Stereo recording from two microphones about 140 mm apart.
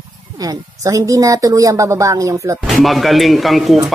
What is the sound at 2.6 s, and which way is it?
Speech, centre (ahead or behind).